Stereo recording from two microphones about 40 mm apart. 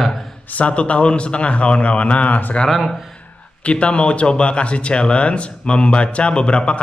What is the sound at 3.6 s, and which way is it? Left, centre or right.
Speech, left.